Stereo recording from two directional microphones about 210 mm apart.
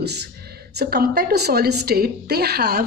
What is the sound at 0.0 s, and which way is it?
A woman's voice, 50° right (ahead or behind).